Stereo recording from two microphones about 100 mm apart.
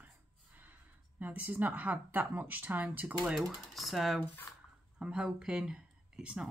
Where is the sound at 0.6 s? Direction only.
15° right (ahead or behind).